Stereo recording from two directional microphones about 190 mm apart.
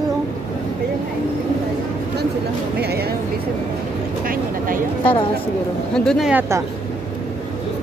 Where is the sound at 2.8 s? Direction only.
55° right (ahead or behind).